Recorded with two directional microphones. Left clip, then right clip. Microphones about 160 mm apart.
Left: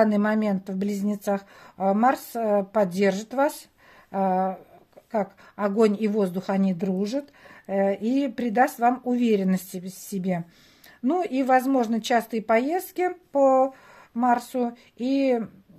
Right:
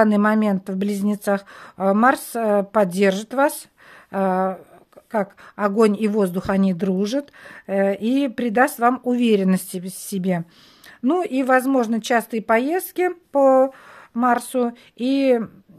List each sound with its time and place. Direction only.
0.0 s a woman's voice: 40° right (ahead or behind)